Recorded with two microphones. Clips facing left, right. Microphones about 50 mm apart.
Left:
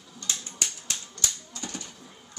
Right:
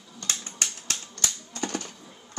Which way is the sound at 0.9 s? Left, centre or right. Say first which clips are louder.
Right 2 dB; right.